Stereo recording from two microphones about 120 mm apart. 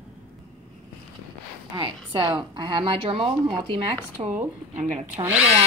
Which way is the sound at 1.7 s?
45° right (ahead or behind).